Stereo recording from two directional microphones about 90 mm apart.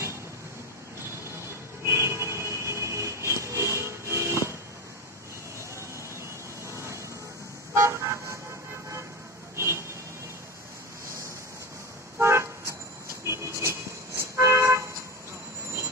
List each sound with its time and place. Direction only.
1.9 s a sound: 30° right (ahead or behind)
6.7 s a sound: 30° right (ahead or behind)
7.7 s vehicle: 35° right (ahead or behind)
9.6 s vehicle: 30° right (ahead or behind)
12.2 s vehicle: 30° right (ahead or behind)
13.3 s toot: 30° right (ahead or behind)